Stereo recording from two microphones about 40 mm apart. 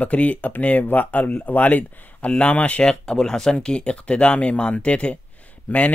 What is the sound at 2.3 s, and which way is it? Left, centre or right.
Speech, left.